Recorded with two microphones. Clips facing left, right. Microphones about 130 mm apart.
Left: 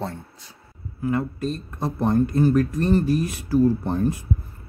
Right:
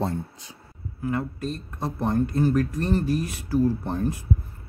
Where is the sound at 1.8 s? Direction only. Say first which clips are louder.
Left 4 dB; 50° left (ahead or behind).